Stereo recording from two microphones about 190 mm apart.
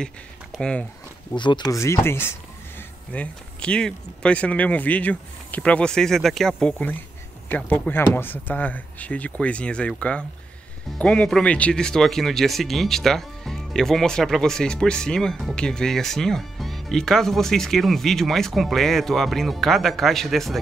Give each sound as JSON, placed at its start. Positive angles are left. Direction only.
{"t": 0.0, "sound": "speech", "side_deg": 5}
{"t": 1.3, "sound": "speech", "side_deg": 25}